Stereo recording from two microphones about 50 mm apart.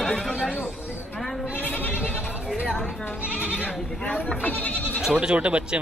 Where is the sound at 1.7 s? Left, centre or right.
Left.